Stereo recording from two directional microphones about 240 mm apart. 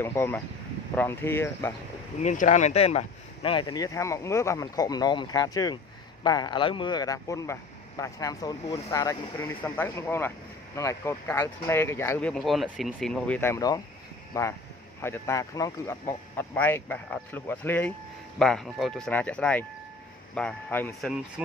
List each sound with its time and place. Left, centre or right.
0.0 s speech: centre
2.1 s speech: left; by 21.2 s centre